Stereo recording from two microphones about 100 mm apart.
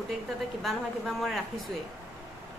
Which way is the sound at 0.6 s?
Centre (ahead or behind).